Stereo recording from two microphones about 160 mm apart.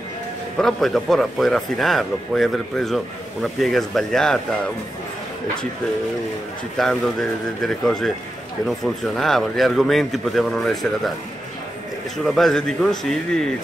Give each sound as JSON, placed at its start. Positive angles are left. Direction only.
{"t": 0.6, "sound": "speech", "side_deg": 5}
{"t": 6.8, "sound": "speech", "side_deg": 0}
{"t": 12.4, "sound": "speech", "side_deg": 0}